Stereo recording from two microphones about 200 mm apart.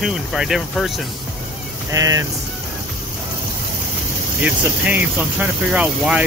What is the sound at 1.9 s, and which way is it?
Speech, 15° right (ahead or behind).